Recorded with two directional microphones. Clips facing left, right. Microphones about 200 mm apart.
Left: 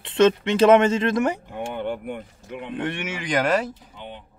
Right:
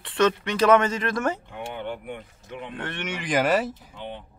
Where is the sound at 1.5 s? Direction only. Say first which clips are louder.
Left 5 dB; 50° left (ahead or behind).